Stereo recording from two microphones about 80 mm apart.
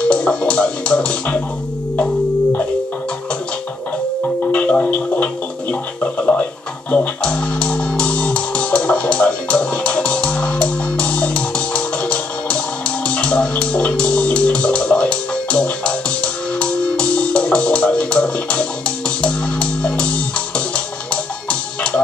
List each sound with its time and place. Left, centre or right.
0.1 s music: centre
4.5 s music: centre
21.5 s music: centre